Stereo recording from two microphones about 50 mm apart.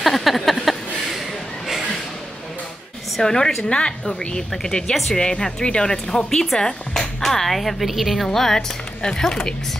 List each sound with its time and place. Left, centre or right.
0.0 s a sound: centre
3.2 s speech: centre
4.9 s speech: centre
5.2 s speech: centre